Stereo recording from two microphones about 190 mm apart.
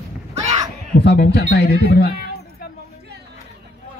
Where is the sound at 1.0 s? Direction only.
60° left (ahead or behind).